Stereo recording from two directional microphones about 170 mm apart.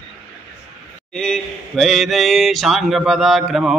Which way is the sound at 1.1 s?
5° left (ahead or behind).